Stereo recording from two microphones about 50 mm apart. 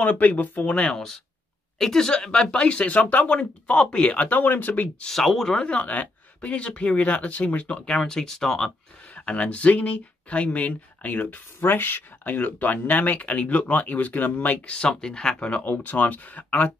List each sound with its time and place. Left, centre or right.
0.0 s speech: left
0.8 s speech: centre; by 4.8 s left
5.0 s speech: centre
5.8 s speech: left
8.0 s speech: centre
9.1 s speech: left
14.8 s speech: centre
15.3 s speech: left